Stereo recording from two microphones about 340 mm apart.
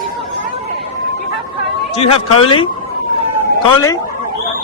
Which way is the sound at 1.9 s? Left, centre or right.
Centre.